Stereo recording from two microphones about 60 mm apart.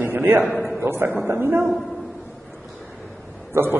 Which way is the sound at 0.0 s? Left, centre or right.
Right.